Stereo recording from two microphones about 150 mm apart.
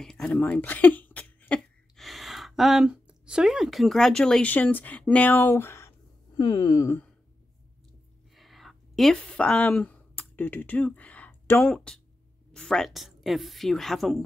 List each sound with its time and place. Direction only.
0.0 s speech: 5° left (ahead or behind); by 7.0 s 25° left (ahead or behind)
8.4 s a sound: centre (ahead or behind)
11.7 s a woman's voice: 5° left (ahead or behind)